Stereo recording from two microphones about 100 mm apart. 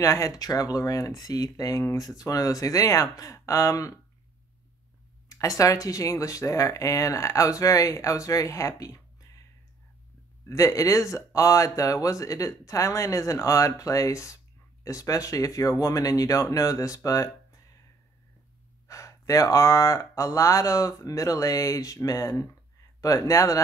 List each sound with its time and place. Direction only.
0.0 s speech: 35° left (ahead or behind)
5.3 s speech: 35° left (ahead or behind)
10.5 s speech: 35° left (ahead or behind)
18.9 s speech: 35° left (ahead or behind)